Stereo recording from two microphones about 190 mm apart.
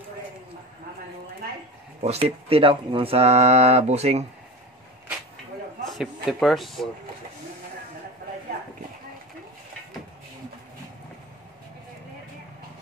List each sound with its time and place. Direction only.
2.0 s speech: 35° right (ahead or behind)
5.9 s speech: centre (ahead or behind)